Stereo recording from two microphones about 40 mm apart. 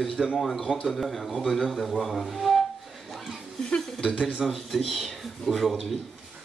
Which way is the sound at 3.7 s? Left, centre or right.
Left.